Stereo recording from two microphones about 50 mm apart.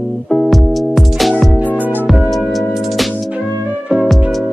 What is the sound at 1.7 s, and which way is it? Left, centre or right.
Music, right.